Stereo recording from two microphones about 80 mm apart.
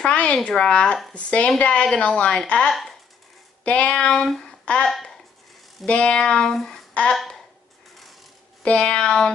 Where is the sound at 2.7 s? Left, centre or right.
Centre.